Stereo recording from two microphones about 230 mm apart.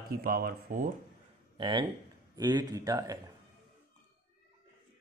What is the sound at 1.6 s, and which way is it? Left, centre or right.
Speech, centre.